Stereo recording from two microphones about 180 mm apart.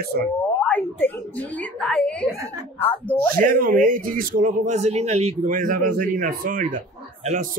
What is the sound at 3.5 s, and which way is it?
Speech, 50° right (ahead or behind).